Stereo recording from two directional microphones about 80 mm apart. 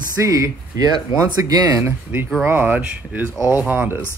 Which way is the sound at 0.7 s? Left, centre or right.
Right.